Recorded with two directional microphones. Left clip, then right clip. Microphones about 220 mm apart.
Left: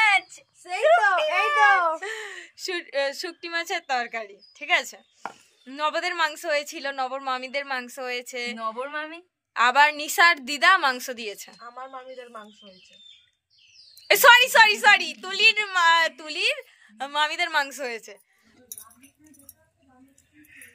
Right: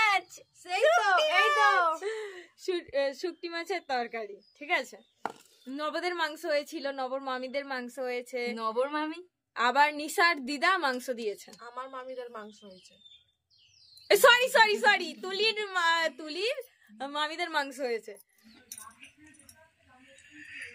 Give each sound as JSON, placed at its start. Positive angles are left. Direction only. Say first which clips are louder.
{"t": 0.9, "sound": "a sound", "louder": "left 5 dB", "side_deg": 25}
{"t": 2.0, "sound": "speech", "louder": "left 3 dB", "side_deg": -5}
{"t": 8.5, "sound": "speech", "louder": "even", "side_deg": -55}
{"t": 9.5, "sound": "speech", "louder": "left 7 dB", "side_deg": -5}
{"t": 11.5, "sound": "speech", "louder": "left 2 dB", "side_deg": -30}
{"t": 14.0, "sound": "speech", "louder": "left 6 dB", "side_deg": -10}